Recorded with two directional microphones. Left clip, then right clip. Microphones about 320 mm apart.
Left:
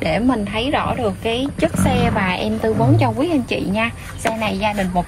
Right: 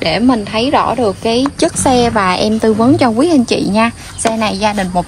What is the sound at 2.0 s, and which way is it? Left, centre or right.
Speech, right.